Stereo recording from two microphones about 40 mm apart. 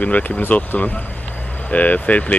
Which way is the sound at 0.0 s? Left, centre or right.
Left.